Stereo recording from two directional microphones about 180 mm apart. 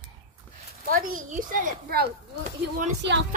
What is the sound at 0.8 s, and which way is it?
Speech, 50° right (ahead or behind).